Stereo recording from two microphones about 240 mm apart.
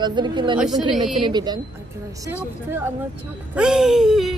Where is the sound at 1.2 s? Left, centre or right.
Centre.